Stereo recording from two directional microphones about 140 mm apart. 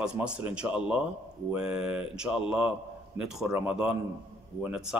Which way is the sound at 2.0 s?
5° right (ahead or behind).